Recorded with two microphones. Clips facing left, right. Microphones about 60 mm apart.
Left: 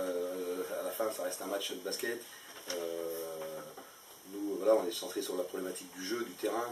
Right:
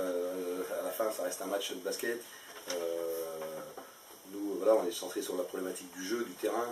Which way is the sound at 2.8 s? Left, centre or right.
Centre.